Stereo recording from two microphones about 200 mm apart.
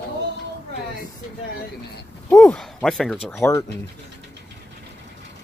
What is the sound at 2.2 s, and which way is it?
Speech, 5° left (ahead or behind).